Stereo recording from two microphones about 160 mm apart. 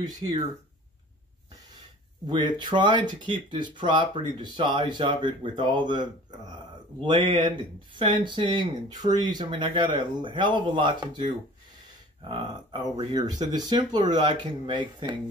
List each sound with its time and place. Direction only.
0.0 s speech: 25° right (ahead or behind)
2.2 s speech: 30° right (ahead or behind)
7.1 s speech: 30° right (ahead or behind)